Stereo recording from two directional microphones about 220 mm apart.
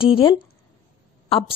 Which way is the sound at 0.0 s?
25° left (ahead or behind).